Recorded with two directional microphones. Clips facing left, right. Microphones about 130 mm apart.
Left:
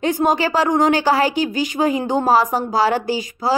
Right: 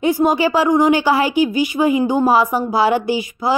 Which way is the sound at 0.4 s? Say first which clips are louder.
Right 3 dB; 15° right (ahead or behind).